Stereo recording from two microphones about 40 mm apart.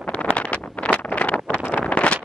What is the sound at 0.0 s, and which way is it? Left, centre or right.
Wind noise, left.